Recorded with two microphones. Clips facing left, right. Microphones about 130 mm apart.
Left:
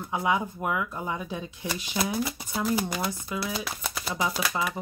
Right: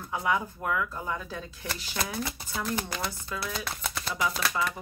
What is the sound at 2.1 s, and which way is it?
Speech, 5° left (ahead or behind).